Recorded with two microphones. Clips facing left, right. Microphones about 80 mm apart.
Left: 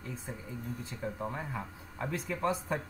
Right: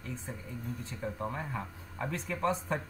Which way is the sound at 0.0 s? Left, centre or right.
Centre.